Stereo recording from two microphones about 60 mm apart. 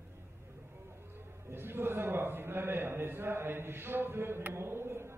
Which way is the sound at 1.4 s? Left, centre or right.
Right.